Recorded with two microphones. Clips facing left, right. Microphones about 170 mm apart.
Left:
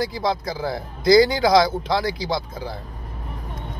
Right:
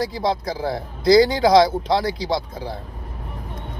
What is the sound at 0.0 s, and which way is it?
Speech, 30° right (ahead or behind).